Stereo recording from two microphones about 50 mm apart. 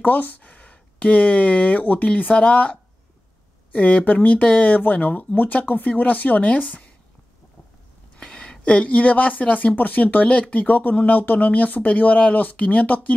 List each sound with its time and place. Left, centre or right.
0.0 s speech: left
8.2 s speech: centre